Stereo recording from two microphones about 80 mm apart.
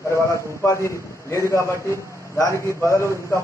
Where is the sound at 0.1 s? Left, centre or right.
Left.